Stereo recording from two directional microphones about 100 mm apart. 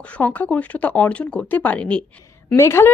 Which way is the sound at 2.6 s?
25° left (ahead or behind).